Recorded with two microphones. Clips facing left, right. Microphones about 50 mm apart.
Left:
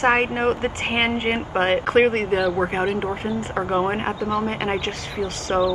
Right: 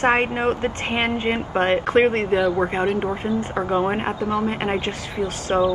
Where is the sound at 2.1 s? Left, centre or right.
Centre.